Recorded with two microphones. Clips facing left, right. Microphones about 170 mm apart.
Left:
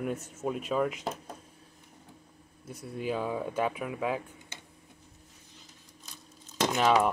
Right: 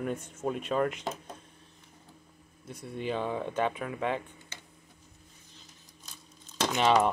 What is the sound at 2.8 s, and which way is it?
Speech, 5° left (ahead or behind).